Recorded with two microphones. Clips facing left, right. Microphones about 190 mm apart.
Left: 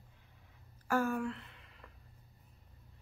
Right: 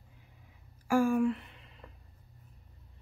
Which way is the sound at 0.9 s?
10° right (ahead or behind).